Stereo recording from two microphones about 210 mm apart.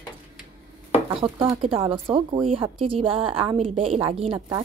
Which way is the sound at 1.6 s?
25° right (ahead or behind).